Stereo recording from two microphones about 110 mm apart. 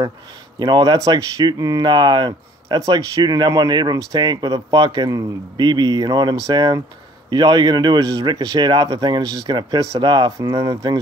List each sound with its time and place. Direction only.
0.6 s speech: 40° right (ahead or behind)